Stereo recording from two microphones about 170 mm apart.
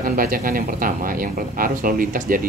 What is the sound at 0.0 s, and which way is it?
Speech, 55° right (ahead or behind).